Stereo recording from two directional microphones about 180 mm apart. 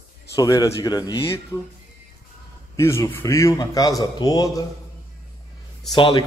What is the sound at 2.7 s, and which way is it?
A man's voice, 15° left (ahead or behind).